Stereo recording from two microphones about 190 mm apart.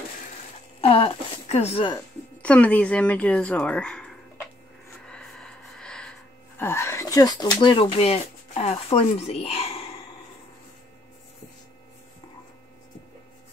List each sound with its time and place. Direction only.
0.7 s speech: 30° left (ahead or behind)
2.4 s speech: 5° left (ahead or behind)
5.0 s a sound: 5° left (ahead or behind); by 10.0 s 30° left (ahead or behind)